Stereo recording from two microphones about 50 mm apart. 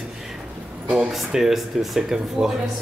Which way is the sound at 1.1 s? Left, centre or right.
Centre.